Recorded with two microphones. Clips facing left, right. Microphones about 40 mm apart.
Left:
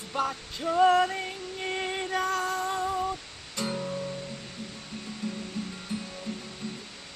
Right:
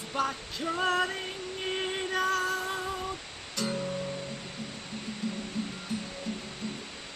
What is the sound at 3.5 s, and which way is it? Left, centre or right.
Guitar, centre.